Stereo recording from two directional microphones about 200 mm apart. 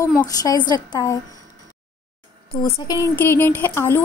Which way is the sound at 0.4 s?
20° left (ahead or behind).